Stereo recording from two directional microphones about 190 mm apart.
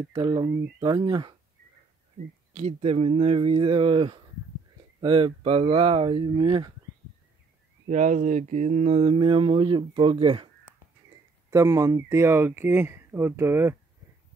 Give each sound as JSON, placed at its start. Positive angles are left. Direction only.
{"t": 0.1, "sound": "speech", "side_deg": -25}
{"t": 2.5, "sound": "speech", "side_deg": -35}
{"t": 7.9, "sound": "speech", "side_deg": -40}
{"t": 11.5, "sound": "speech", "side_deg": -15}